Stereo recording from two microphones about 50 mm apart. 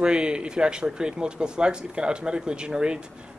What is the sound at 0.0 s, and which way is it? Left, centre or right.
Speech, centre.